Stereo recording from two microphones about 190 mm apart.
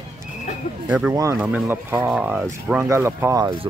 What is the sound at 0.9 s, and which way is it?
Speech, 5° right (ahead or behind).